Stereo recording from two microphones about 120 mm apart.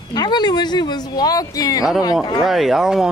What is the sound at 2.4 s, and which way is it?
Speech, 5° right (ahead or behind).